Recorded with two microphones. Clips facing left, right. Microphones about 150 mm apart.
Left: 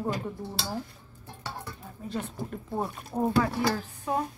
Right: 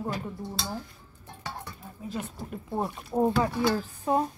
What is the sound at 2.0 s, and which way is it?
Speech, 5° right (ahead or behind).